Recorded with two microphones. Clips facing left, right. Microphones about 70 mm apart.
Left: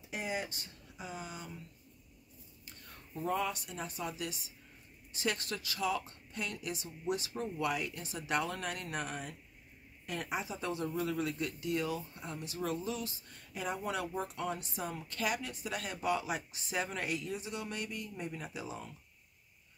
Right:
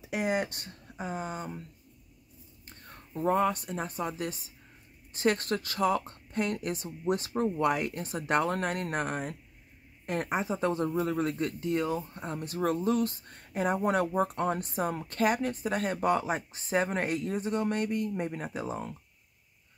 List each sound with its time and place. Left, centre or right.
0.1 s speech: right
2.6 s speech: right